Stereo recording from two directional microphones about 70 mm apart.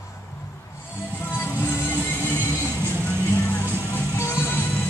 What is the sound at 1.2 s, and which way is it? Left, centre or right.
Music, left.